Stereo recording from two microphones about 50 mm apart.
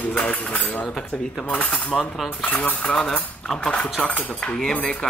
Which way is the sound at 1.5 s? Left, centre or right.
Left.